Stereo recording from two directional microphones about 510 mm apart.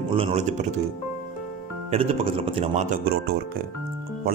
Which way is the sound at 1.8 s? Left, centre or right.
Centre.